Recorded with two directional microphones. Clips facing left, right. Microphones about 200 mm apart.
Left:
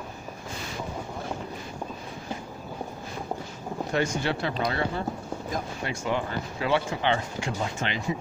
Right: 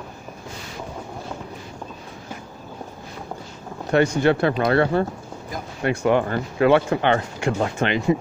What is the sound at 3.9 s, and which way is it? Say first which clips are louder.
Speech: right 10 dB; 60° right (ahead or behind).